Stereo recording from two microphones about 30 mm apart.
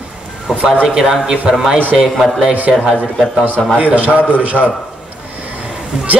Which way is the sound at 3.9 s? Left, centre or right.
Right.